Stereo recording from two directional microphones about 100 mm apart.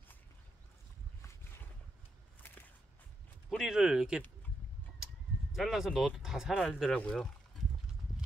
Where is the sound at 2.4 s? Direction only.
20° left (ahead or behind).